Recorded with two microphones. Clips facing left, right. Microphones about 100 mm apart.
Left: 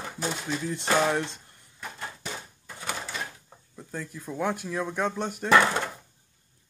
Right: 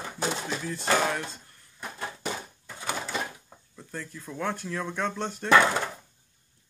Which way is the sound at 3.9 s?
10° left (ahead or behind).